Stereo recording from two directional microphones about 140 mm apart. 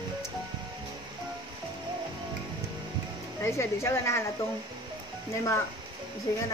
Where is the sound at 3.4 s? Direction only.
20° left (ahead or behind).